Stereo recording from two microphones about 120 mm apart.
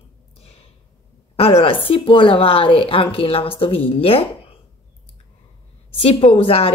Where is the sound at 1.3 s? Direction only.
50° left (ahead or behind).